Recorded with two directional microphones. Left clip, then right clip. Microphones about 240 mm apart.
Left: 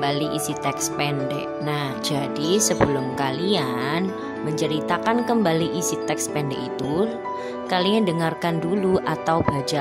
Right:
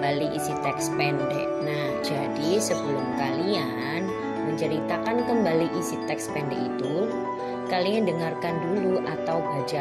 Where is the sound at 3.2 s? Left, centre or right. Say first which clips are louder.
Left 4 dB; left.